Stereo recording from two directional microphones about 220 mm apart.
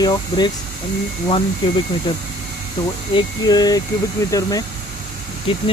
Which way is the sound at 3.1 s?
20° left (ahead or behind).